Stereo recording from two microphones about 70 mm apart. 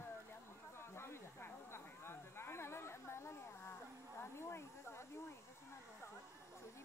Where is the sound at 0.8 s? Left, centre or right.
Left.